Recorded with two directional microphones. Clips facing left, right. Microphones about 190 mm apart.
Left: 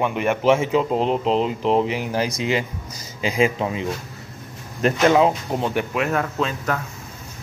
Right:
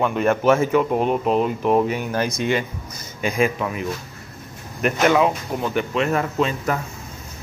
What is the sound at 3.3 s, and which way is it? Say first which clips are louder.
Speech: left 1 dB; 25° left (ahead or behind).